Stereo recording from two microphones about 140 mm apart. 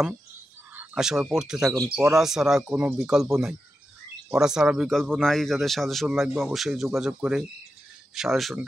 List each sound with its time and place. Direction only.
0.7 s speech: 5° right (ahead or behind)